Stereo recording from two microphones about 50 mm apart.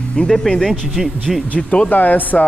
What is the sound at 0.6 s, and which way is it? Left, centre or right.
Speech, centre.